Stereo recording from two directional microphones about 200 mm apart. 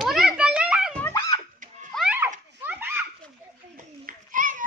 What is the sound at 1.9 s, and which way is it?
Children playing, 5° right (ahead or behind).